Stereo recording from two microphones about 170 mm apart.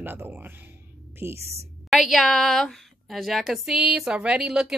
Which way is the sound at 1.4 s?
40° right (ahead or behind).